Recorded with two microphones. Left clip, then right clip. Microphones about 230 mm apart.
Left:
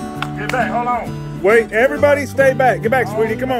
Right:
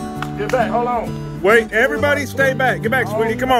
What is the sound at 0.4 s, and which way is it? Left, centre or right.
Speech, right.